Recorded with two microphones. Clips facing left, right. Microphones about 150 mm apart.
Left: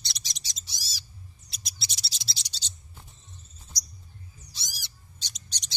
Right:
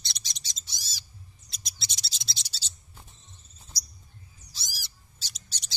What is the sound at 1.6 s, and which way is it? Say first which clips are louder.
Mouse: left 1 dB; centre (ahead or behind).